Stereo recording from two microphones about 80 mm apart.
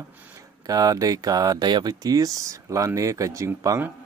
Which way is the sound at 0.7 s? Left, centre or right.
Right.